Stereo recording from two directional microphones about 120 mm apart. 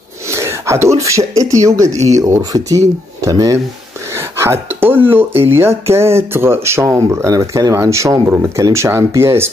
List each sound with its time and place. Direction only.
0.3 s speech: 25° right (ahead or behind)